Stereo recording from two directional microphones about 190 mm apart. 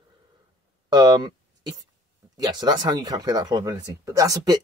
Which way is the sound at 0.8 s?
20° right (ahead or behind).